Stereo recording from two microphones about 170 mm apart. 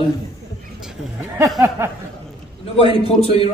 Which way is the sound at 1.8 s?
15° right (ahead or behind).